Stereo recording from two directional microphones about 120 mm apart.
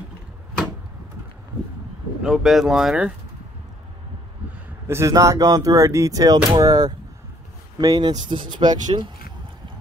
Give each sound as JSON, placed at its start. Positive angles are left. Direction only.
{"t": 2.2, "sound": "speech", "side_deg": 0}
{"t": 4.8, "sound": "speech", "side_deg": -25}